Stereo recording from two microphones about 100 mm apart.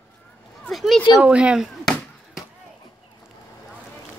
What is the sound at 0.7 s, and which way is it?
Speech, centre (ahead or behind).